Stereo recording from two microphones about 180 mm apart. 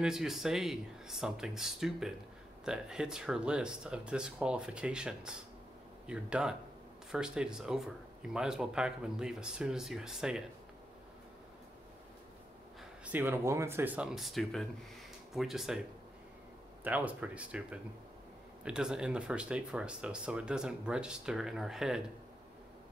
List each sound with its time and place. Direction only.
0.0 s speech: 5° right (ahead or behind)
13.0 s speech: 10° right (ahead or behind)
16.8 s speech: 10° right (ahead or behind)